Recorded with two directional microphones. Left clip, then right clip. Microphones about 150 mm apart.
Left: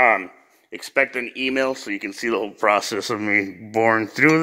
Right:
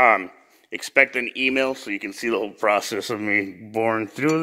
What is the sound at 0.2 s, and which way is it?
Speech, 25° right (ahead or behind).